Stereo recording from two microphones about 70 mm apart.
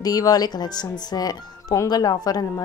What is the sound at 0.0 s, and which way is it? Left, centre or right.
A woman's voice, left.